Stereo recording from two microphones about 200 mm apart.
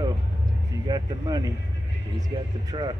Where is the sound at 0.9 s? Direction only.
20° right (ahead or behind).